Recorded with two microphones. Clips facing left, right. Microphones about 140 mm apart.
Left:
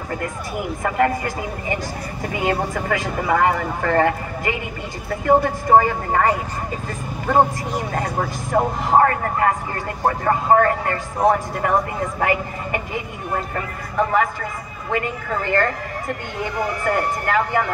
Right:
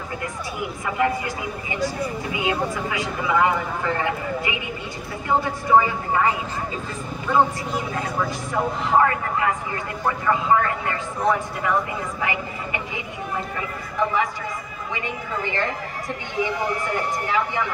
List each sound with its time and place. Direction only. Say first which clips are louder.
0.8 s a man's voice: left 3 dB; 50° left (ahead or behind)
16.8 s speech: left 4 dB; 55° left (ahead or behind)